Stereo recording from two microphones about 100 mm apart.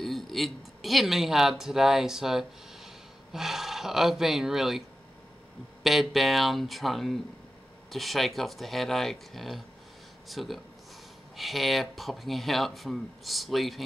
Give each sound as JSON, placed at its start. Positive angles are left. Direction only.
{"t": 0.0, "sound": "speech", "side_deg": 0}
{"t": 5.9, "sound": "speech", "side_deg": 0}